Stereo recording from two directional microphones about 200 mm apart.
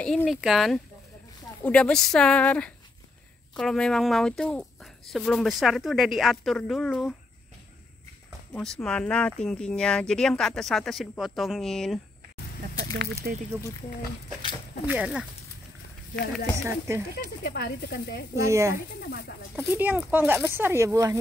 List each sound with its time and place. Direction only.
0.0 s speech: centre (ahead or behind)
8.5 s speech: 5° left (ahead or behind)
12.9 s speech: 65° right (ahead or behind)
14.9 s speech: 5° right (ahead or behind)
16.6 s speech: 15° right (ahead or behind)
17.1 s speech: 50° left (ahead or behind)
18.3 s speech: 15° right (ahead or behind)
18.9 s speech: 55° left (ahead or behind)
19.5 s speech: 10° right (ahead or behind)